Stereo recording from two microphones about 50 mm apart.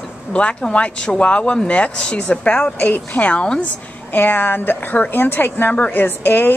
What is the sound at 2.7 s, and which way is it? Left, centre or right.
Speech, left.